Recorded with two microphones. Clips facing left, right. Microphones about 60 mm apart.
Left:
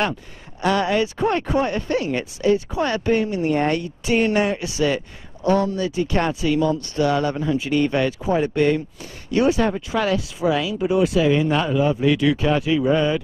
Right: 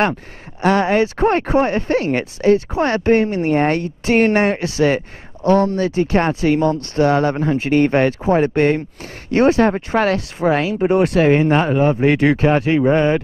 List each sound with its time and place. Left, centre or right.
0.6 s speech: right